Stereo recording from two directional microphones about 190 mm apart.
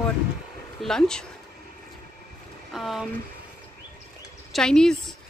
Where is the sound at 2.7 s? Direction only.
Centre (ahead or behind).